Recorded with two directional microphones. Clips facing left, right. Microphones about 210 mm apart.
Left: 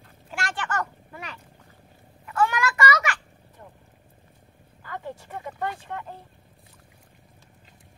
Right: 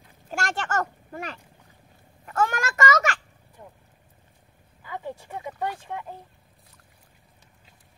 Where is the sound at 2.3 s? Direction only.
45° right (ahead or behind).